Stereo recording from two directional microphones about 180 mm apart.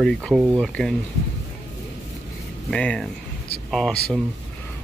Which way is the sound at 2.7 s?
5° left (ahead or behind).